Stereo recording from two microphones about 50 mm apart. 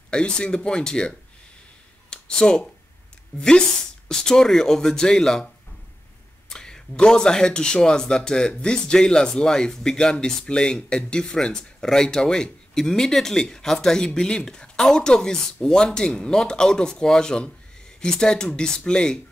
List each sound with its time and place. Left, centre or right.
0.1 s speech: left
2.0 s a sound: centre
3.3 s speech: centre
6.5 s speech: centre